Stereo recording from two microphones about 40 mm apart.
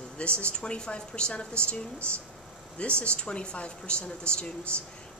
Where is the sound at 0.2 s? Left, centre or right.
Left.